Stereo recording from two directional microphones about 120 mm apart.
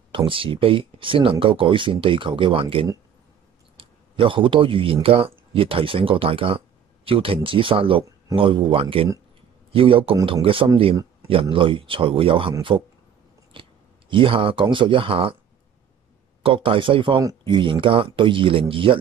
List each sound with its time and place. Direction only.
0.1 s speech: 45° right (ahead or behind)
16.4 s speech: 45° right (ahead or behind)